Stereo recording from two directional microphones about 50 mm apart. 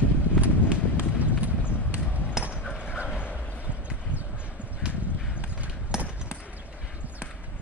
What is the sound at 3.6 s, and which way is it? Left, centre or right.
Clip-clop, right.